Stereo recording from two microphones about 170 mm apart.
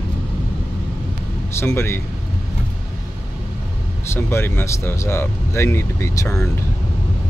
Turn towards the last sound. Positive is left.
turn(degrees=15)  # may be behind; listen again after turning